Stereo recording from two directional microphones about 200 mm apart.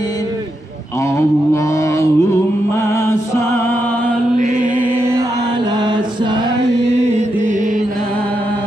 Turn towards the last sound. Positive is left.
turn(degrees=-40)  # may be behind; listen again after turning